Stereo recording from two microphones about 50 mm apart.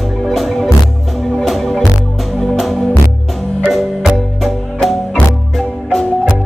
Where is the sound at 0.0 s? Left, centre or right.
Centre.